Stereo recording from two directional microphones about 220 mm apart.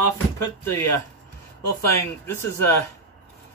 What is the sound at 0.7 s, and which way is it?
Speech, 15° left (ahead or behind).